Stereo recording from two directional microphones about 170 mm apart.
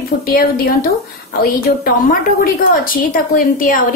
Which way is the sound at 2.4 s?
55° left (ahead or behind).